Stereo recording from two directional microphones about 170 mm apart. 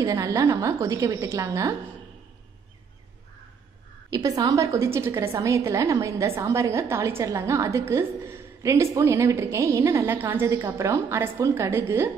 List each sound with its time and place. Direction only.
0.0 s a woman's voice: 20° right (ahead or behind)
4.1 s a woman's voice: 20° right (ahead or behind)